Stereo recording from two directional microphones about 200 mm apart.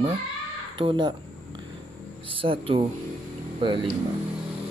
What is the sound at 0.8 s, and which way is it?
Speech, 25° right (ahead or behind).